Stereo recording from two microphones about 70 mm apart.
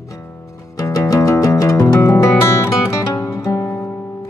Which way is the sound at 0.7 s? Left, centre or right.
Left.